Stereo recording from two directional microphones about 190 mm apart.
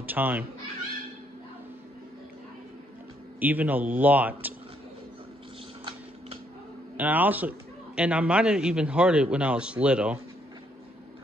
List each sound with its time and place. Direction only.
0.0 s speech: 10° right (ahead or behind)
3.3 s speech: 10° right (ahead or behind)
5.9 s tick-tock: 30° right (ahead or behind)
7.0 s a man's voice: 10° right (ahead or behind)